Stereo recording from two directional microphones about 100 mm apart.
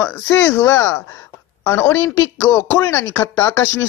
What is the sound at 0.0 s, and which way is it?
Speech, 25° left (ahead or behind).